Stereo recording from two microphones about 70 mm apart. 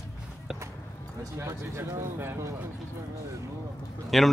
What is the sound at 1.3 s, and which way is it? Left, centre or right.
Speech, right.